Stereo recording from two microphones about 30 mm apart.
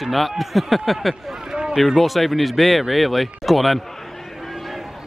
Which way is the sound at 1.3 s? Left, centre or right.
Centre.